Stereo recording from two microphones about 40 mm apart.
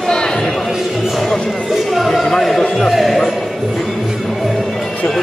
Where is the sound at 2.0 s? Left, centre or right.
Centre.